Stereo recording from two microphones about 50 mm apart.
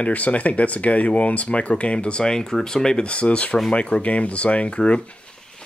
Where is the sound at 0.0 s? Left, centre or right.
Left.